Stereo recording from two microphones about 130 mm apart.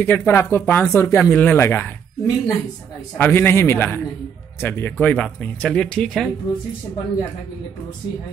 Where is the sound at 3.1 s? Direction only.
15° left (ahead or behind).